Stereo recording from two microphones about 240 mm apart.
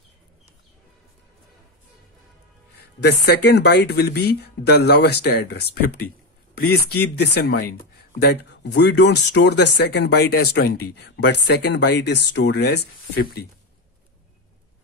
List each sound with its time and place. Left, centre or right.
3.0 s speech: left